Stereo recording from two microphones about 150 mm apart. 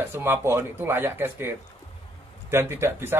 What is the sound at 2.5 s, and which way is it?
Speech, 15° right (ahead or behind).